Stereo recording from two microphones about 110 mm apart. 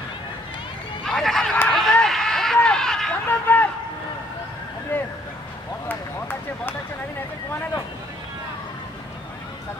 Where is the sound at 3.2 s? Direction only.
15° left (ahead or behind).